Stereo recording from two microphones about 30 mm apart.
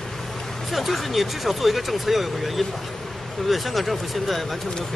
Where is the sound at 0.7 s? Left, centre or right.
Centre.